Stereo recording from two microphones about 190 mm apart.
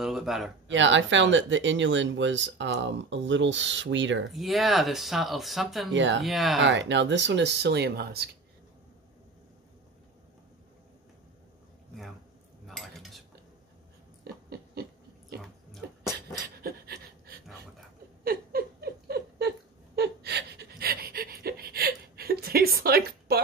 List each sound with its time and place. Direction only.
0.0 s speech: centre (ahead or behind)
0.7 s speech: 75° right (ahead or behind)
4.3 s speech: centre (ahead or behind)
5.9 s speech: 75° right (ahead or behind)
6.2 s speech: centre (ahead or behind)
6.6 s speech: 70° right (ahead or behind)
12.6 s cutlery: centre (ahead or behind)
14.2 s pig: 55° right (ahead or behind)
16.4 s pant: 55° right (ahead or behind)
18.2 s a sound: 50° right (ahead or behind)
20.0 s gasp: 60° right (ahead or behind)